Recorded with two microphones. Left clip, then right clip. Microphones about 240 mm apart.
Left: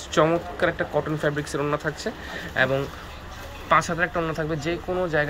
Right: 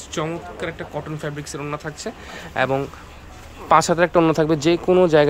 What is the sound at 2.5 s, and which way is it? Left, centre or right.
Speech, centre.